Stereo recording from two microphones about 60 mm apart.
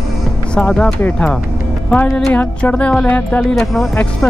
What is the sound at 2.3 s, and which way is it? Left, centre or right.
Speech, left.